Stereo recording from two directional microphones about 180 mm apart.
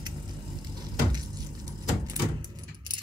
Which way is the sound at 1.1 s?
20° right (ahead or behind).